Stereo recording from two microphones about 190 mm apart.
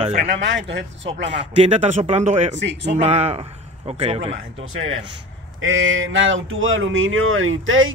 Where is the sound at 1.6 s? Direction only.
35° right (ahead or behind).